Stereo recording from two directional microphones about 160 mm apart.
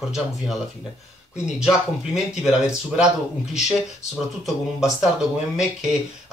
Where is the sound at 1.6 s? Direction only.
5° right (ahead or behind).